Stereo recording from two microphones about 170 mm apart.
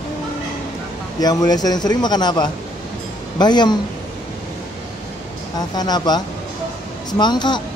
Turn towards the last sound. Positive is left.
turn(degrees=25)  # may be behind; listen again after turning